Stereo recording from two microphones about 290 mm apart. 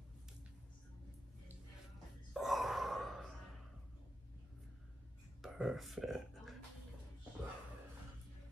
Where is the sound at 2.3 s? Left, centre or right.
Centre.